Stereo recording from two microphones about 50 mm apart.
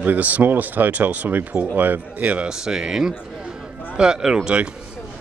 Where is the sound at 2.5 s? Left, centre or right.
Centre.